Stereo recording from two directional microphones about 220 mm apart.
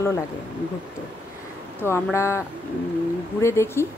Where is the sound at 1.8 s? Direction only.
10° left (ahead or behind).